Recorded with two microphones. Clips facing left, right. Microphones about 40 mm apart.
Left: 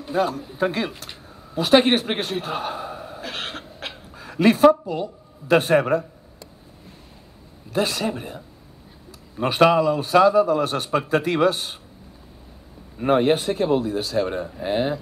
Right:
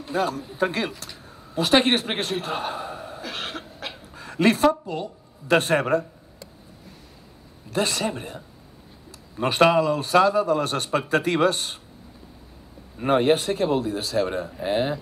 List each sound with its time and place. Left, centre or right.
0.0 s a man's voice: centre
3.2 s a sound: left
4.1 s a sound: centre
5.5 s speech: centre
7.7 s speech: centre
9.8 s a man's voice: centre
12.9 s a man's voice: centre